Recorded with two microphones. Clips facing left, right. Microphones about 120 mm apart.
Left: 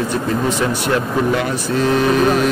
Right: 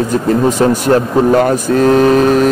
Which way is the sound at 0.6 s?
40° right (ahead or behind).